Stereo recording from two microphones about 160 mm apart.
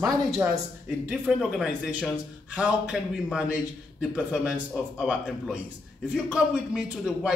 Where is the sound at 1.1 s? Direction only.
Centre (ahead or behind).